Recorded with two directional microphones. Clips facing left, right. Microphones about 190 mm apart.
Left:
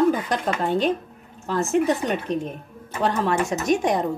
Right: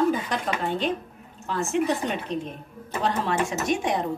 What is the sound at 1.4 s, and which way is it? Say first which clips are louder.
Cutlery: left 4 dB; 40° left (ahead or behind).